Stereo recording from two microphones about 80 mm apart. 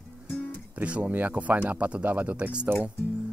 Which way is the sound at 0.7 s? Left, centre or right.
Centre.